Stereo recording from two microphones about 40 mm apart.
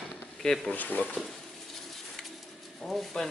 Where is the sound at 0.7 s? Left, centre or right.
Left.